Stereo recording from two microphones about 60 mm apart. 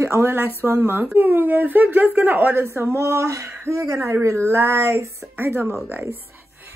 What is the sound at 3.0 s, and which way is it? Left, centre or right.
Speech, right.